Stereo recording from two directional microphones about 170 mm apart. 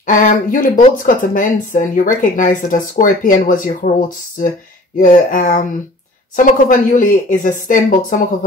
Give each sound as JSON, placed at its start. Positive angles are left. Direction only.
{"t": 0.0, "sound": "speech", "side_deg": 50}
{"t": 5.0, "sound": "speech", "side_deg": 50}